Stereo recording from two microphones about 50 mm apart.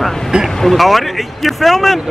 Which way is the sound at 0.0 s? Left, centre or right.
Centre.